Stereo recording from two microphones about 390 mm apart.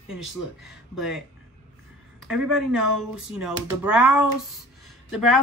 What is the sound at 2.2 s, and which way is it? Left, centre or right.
Speech, centre.